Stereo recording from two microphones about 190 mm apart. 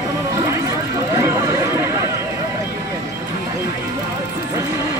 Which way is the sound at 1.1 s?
15° right (ahead or behind).